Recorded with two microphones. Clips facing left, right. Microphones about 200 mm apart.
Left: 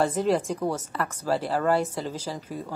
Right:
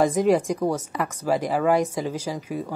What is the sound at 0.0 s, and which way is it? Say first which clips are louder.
Speech: right 4 dB; 10° right (ahead or behind).